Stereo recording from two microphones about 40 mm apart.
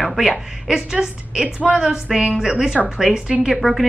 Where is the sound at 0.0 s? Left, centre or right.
Centre.